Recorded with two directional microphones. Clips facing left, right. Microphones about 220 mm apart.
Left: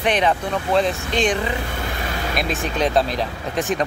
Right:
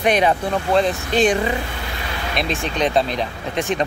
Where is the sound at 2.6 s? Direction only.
Centre (ahead or behind).